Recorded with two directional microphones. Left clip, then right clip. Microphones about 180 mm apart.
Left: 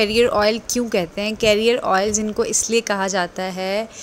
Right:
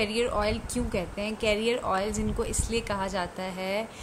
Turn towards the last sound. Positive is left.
turn(degrees=35)  # may be behind; listen again after turning